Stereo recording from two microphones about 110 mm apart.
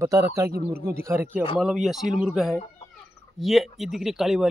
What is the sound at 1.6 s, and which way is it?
Speech, centre (ahead or behind).